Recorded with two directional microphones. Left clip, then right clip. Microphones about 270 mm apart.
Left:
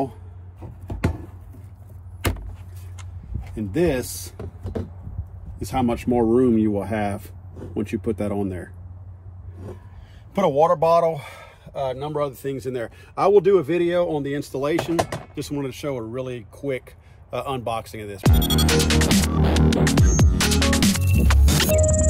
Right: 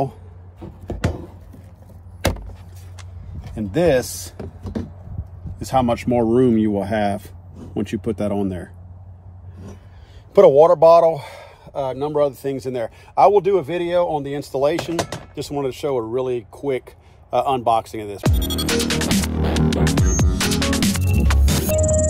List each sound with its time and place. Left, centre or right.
3.5 s speech: right
6.0 s speech: right
10.3 s speech: right
18.2 s music: centre